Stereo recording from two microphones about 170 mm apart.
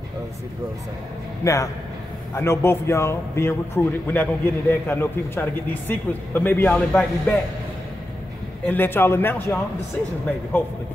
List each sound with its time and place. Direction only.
1.4 s a man's voice: 20° left (ahead or behind)
8.6 s a man's voice: 10° left (ahead or behind)